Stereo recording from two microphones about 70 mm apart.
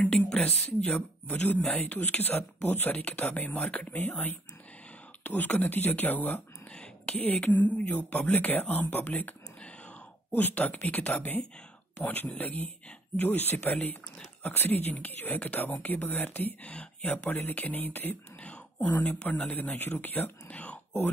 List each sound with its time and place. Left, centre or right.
0.0 s speech: centre
5.2 s speech: left
6.7 s a sound: centre
7.5 s speech: left
16.7 s speech: centre
17.2 s speech: left